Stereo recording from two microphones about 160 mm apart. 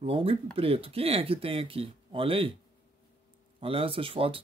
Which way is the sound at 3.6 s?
35° right (ahead or behind).